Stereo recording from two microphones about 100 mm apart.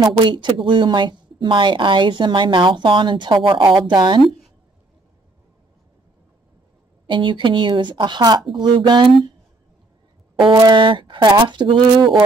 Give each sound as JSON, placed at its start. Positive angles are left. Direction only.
{"t": 0.0, "sound": "a woman's voice", "side_deg": -50}
{"t": 7.1, "sound": "a woman's voice", "side_deg": -55}
{"t": 10.4, "sound": "a woman's voice", "side_deg": -45}